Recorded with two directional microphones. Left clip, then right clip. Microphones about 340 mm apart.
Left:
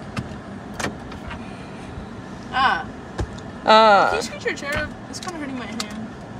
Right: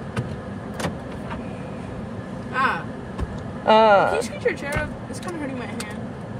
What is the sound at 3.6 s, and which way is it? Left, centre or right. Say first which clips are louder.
Speech: left 2 dB; centre.